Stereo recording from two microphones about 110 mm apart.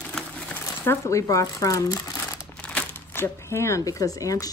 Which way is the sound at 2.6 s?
10° left (ahead or behind).